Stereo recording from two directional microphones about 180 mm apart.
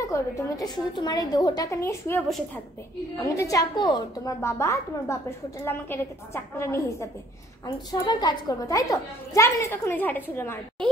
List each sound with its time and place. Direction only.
0.0 s a woman's voice: 20° left (ahead or behind)
2.2 s a woman's voice: centre (ahead or behind)
3.3 s a woman's voice: 20° left (ahead or behind)